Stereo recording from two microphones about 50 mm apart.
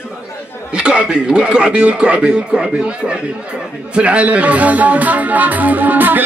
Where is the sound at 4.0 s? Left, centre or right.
Right.